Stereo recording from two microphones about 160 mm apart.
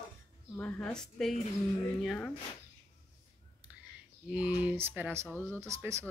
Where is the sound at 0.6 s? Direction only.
10° left (ahead or behind).